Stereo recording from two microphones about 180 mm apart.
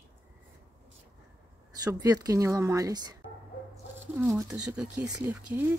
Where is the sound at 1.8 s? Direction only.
20° right (ahead or behind).